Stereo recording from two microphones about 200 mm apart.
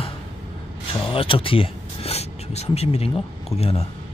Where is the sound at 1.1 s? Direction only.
25° left (ahead or behind).